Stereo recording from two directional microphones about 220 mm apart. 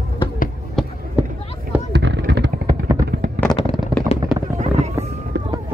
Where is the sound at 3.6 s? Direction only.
25° left (ahead or behind).